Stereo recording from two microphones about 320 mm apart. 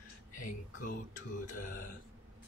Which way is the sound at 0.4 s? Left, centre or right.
Left.